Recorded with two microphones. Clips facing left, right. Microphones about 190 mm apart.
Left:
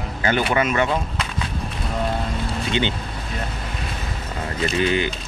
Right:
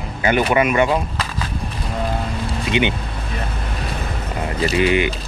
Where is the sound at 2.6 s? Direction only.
15° right (ahead or behind).